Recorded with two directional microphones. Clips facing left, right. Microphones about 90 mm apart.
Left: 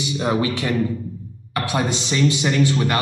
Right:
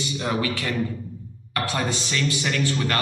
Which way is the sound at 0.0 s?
20° left (ahead or behind).